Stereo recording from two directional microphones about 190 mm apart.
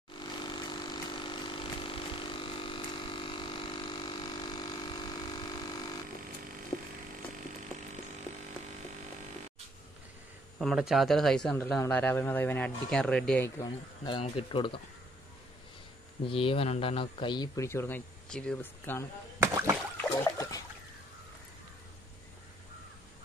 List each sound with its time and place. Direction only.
0.2 s vehicle: 25° left (ahead or behind)
10.6 s speech: centre (ahead or behind)
13.6 s speech: 25° left (ahead or behind)
16.3 s speech: 30° left (ahead or behind); by 19.0 s 10° left (ahead or behind)
19.4 s a sound: 15° right (ahead or behind)
20.0 s a sound: 20° left (ahead or behind)